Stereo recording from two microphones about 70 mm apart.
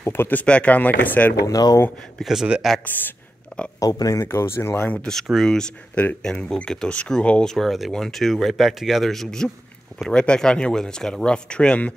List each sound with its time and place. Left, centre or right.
0.0 s speech: left
1.4 s speech: left
2.2 s speech: centre
3.5 s a sound: centre
3.8 s speech: left
4.2 s speech: left
4.9 s speech: centre
7.5 s speech: centre